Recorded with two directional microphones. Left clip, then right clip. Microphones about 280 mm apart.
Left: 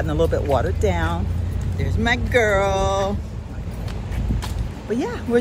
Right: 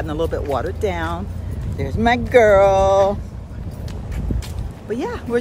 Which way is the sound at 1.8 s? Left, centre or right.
Right.